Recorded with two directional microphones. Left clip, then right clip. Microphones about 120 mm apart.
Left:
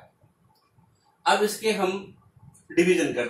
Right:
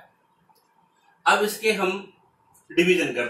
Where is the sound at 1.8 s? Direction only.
15° left (ahead or behind).